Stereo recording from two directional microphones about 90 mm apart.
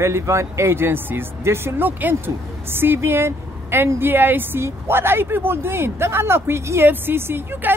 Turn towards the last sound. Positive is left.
turn(degrees=-25)  # may be behind; listen again after turning